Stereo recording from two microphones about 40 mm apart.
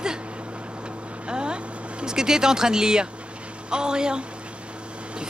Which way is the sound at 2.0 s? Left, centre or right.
Centre.